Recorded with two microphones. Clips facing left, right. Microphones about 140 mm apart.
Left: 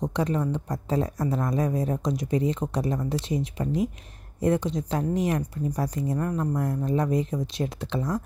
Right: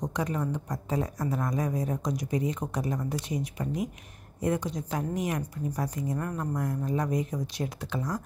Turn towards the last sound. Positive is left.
turn(degrees=25)  # may be behind; listen again after turning